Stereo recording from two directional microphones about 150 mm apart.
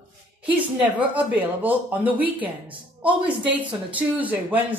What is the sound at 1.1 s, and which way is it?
Speech, 10° right (ahead or behind).